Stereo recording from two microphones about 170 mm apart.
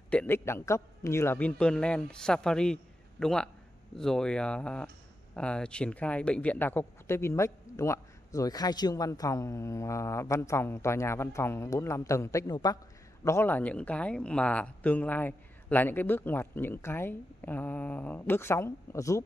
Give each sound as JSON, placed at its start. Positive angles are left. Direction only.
{"t": 0.1, "sound": "a man's voice", "side_deg": 10}